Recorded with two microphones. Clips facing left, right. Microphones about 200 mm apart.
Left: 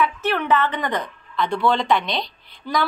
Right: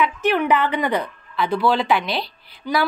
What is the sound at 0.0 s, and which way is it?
Speech, 15° right (ahead or behind).